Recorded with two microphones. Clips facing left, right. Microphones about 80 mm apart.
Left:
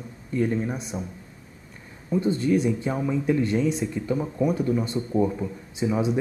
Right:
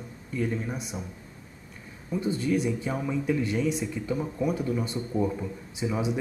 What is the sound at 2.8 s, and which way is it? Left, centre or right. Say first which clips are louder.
Speech: left 4 dB; centre.